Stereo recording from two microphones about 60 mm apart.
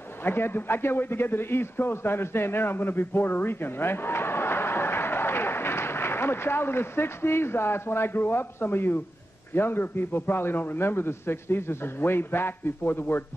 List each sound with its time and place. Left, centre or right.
0.2 s a man's voice: left